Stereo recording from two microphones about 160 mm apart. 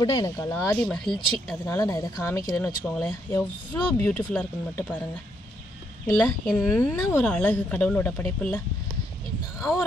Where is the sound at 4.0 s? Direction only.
10° left (ahead or behind).